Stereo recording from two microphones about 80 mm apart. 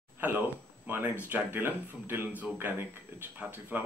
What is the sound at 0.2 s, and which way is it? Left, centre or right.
Speech, right.